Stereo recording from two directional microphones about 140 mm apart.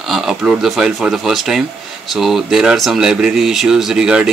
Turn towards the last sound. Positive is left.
turn(degrees=-5)  # may be behind; listen again after turning